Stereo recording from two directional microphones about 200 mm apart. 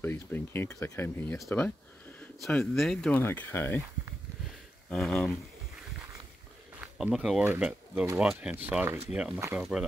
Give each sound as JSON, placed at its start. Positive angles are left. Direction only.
{"t": 0.0, "sound": "speech", "side_deg": 10}
{"t": 4.5, "sound": "a sound", "side_deg": 0}
{"t": 6.8, "sound": "speech", "side_deg": -5}